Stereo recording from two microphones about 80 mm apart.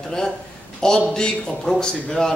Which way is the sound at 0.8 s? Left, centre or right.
Centre.